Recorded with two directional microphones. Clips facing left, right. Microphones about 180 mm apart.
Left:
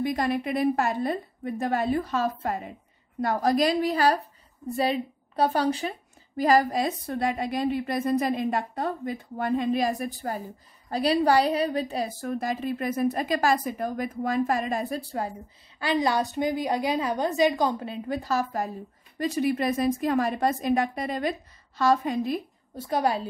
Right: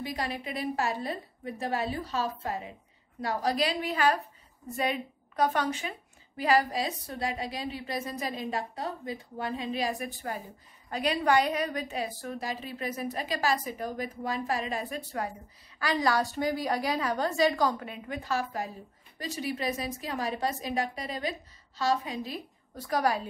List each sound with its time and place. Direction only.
0.0 s a woman's voice: 50° left (ahead or behind)
19.1 s a woman's voice: 55° left (ahead or behind)
22.8 s a woman's voice: 25° left (ahead or behind)